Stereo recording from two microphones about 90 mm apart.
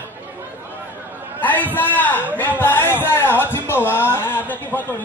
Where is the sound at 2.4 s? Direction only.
20° left (ahead or behind).